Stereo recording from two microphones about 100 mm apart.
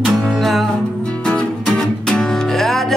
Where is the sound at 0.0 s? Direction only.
Centre (ahead or behind).